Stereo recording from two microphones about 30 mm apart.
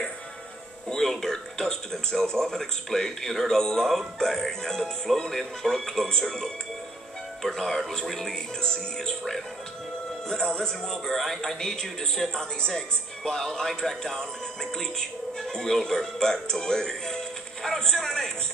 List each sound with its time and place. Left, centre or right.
0.8 s music: centre
1.2 s speech: centre
7.5 s speech: centre
8.5 s speech: left
10.2 s speech: left
11.1 s speech: centre
11.7 s speech: left
13.2 s speech: centre